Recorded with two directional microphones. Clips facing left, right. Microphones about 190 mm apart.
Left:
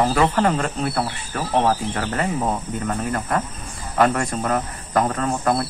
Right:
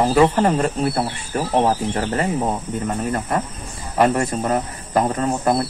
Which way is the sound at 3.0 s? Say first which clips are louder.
Right 1 dB; 25° right (ahead or behind).